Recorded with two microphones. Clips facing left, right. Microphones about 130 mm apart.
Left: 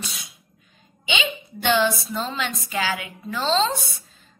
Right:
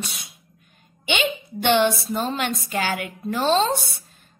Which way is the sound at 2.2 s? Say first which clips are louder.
Right 4 dB; 55° right (ahead or behind).